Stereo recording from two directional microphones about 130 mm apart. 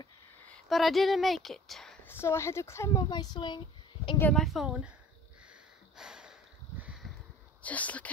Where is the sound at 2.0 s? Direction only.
20° left (ahead or behind); by 4.2 s 35° left (ahead or behind).